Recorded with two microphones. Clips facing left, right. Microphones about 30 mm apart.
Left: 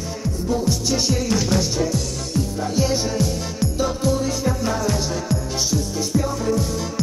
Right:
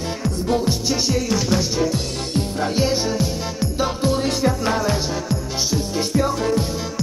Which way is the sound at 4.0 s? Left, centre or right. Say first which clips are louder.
Right 4 dB; right.